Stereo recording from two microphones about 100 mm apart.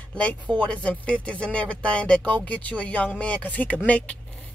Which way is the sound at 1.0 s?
10° left (ahead or behind).